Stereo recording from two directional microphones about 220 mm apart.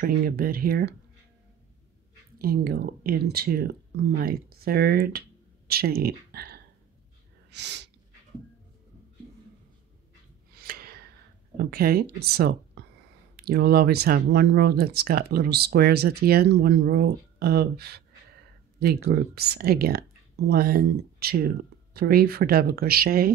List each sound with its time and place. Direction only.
0.0 s speech: 40° right (ahead or behind)
2.3 s speech: 45° right (ahead or behind)
10.5 s a sound: 40° right (ahead or behind)
11.5 s speech: 45° right (ahead or behind)